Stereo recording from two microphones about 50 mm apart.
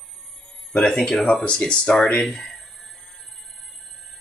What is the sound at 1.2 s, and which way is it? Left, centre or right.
Speech, centre.